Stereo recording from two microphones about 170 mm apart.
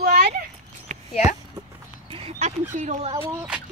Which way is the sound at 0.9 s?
50° right (ahead or behind).